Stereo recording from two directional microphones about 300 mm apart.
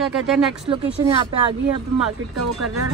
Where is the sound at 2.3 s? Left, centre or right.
Right.